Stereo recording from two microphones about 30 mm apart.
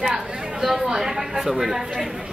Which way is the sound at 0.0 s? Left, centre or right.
Centre.